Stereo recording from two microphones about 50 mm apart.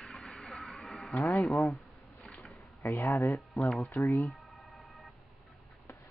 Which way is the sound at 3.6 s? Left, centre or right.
Left.